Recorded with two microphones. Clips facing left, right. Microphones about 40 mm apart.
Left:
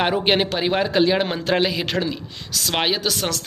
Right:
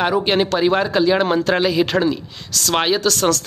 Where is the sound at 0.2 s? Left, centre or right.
Left.